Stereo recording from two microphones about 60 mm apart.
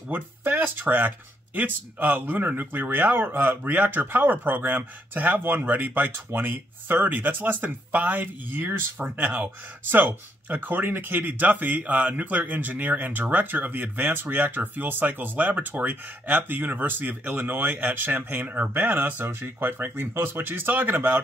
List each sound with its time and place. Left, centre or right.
0.1 s speech: right